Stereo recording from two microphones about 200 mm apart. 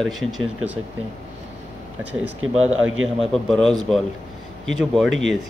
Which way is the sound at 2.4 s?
90° right.